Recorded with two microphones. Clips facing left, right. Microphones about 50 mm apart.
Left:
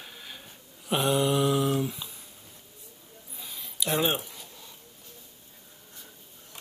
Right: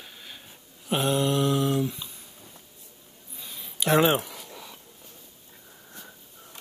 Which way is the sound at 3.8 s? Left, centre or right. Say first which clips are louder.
Right 6 dB; right.